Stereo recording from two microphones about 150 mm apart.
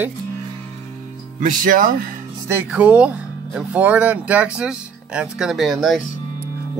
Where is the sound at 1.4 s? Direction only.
65° right (ahead or behind).